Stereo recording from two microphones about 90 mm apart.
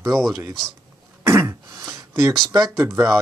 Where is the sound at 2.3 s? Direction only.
50° right (ahead or behind).